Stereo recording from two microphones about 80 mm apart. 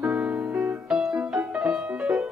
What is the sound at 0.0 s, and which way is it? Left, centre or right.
Music, centre.